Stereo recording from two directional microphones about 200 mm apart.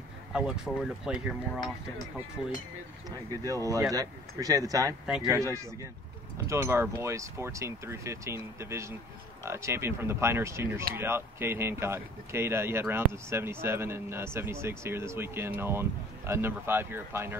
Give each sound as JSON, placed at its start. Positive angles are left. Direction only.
{"t": 0.3, "sound": "speech", "side_deg": -5}
{"t": 3.1, "sound": "speech", "side_deg": -15}